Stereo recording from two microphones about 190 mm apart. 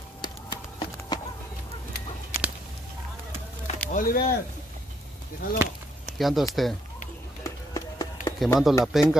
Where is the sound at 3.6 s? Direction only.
45° left (ahead or behind).